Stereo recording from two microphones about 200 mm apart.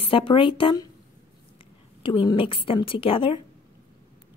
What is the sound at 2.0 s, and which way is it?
Speech, 25° left (ahead or behind).